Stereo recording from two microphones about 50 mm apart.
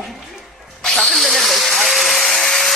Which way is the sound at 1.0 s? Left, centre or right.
Centre.